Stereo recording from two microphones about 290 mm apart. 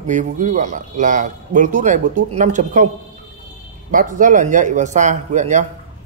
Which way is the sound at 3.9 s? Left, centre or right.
Right.